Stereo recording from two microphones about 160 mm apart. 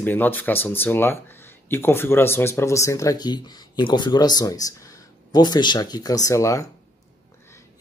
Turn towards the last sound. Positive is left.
turn(degrees=20)  # may be behind; listen again after turning